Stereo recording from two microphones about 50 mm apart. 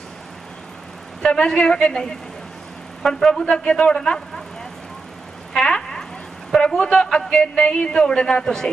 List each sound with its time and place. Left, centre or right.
1.3 s a man's voice: centre
5.6 s a sound: centre
6.7 s a man's voice: centre